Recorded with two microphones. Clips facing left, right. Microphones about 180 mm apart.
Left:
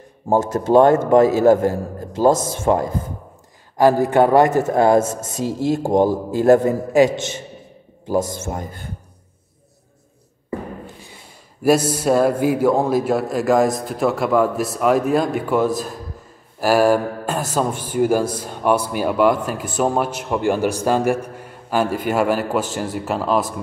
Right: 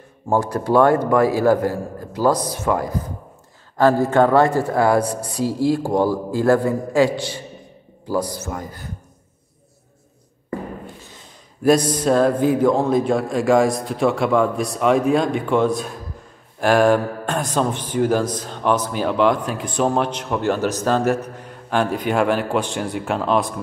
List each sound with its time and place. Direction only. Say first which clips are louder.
0.3 s a man's voice: left 3 dB; 20° left (ahead or behind)
3.7 s a man's voice: left 1 dB; 15° left (ahead or behind)
11.0 s a man's voice: left 1 dB; 10° left (ahead or behind)